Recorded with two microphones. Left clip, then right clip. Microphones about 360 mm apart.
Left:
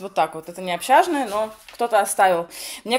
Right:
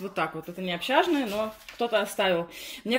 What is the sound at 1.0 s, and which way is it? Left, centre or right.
Speech, left.